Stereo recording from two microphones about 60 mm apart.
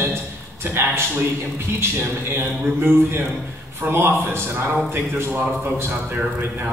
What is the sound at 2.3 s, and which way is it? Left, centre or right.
A man's voice, right.